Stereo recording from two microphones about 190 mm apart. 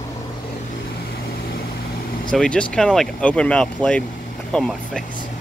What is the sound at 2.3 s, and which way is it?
Speech, 5° left (ahead or behind).